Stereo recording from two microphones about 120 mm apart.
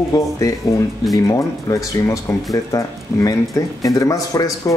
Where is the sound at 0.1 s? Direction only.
30° left (ahead or behind).